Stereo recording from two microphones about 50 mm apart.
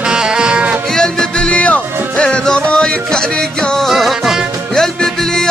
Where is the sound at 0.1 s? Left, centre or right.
Centre.